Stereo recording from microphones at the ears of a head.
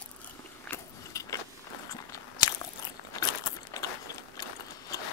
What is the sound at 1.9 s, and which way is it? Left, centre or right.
Crunch, left.